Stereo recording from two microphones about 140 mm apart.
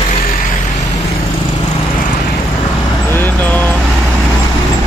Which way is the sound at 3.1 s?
15° left (ahead or behind).